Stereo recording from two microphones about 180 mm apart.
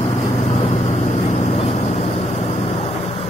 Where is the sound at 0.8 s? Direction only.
40° left (ahead or behind).